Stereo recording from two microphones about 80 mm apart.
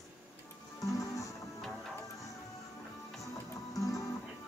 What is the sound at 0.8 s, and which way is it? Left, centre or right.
Music, left.